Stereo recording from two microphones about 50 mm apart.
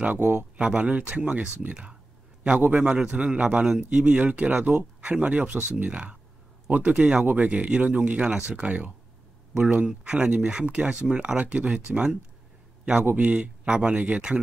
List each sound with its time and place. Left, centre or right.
0.0 s a man's voice: right
13.0 s a man's voice: right
13.4 s speech: centre